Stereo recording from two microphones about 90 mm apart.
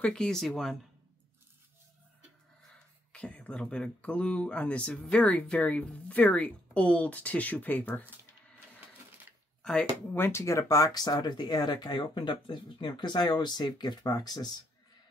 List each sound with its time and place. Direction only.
0.0 s speech: 5° left (ahead or behind)
3.1 s speech: 10° left (ahead or behind)
9.6 s a sound: 5° left (ahead or behind)
10.0 s speech: 25° left (ahead or behind); by 14.5 s 50° left (ahead or behind)